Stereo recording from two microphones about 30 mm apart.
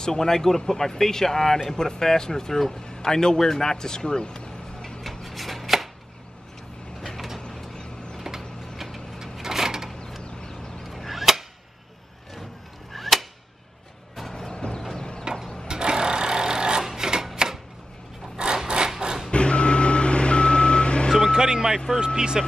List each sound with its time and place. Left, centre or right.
0.0 s a man's voice: centre
4.8 s chopping: centre
9.4 s a sound: centre
10.9 s chop: centre
12.9 s chop: centre
14.5 s a sound: left
15.3 s a sound: right
18.3 s a sound: right
19.0 s vehicle: right
19.3 s reversing beeps: left
21.3 s vehicle: right
22.0 s speech: right